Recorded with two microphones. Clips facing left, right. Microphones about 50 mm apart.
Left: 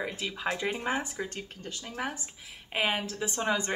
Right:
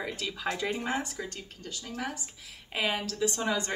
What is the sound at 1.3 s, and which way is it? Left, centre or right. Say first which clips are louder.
Speech: left 2 dB; left.